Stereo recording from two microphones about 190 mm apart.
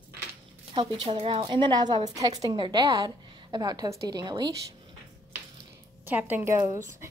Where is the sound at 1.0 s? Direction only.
30° right (ahead or behind).